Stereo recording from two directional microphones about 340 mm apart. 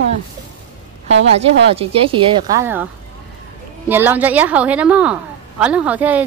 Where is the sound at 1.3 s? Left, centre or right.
Centre.